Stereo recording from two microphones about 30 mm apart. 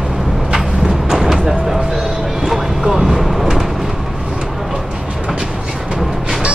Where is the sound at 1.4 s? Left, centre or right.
Centre.